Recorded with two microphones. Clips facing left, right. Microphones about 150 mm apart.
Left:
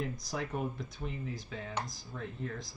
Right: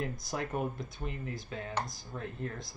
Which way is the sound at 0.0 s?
Centre (ahead or behind).